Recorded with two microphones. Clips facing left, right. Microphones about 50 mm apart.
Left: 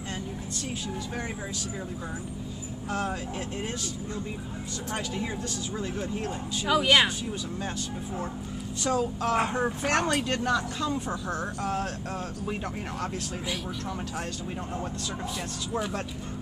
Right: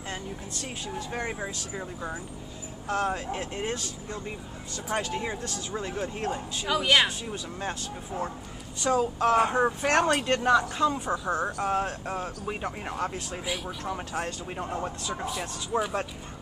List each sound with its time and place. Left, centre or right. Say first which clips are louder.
0.9 s speech: right 2 dB; right
2.9 s speech: right 3 dB; right
6.6 s a woman's voice: left 1 dB; centre
8.8 s speech: right 3 dB; centre
10.2 s speech: right 3 dB; right
10.5 s speech: right 7 dB; centre
14.1 s speech: right 2 dB; right